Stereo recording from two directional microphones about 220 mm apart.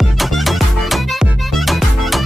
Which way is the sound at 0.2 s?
Centre (ahead or behind).